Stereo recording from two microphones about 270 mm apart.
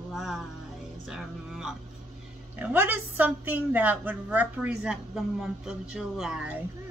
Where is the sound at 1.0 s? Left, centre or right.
Centre.